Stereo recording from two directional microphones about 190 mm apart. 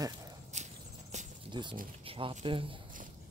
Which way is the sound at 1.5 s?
25° right (ahead or behind).